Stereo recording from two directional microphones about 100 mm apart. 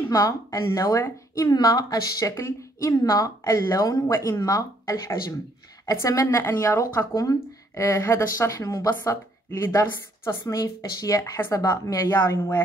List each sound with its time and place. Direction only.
0.0 s a woman's voice: 30° left (ahead or behind)